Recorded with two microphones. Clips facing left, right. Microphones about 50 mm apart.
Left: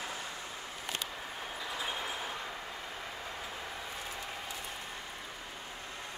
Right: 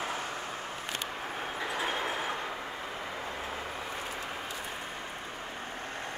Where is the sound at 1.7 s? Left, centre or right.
Right.